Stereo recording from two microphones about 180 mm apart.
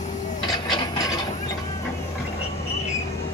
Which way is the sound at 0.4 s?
25° left (ahead or behind).